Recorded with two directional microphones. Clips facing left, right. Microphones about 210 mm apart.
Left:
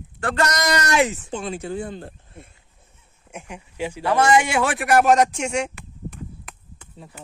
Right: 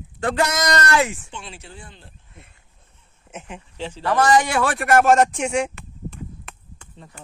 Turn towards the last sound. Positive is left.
turn(degrees=5)  # may be behind; listen again after turning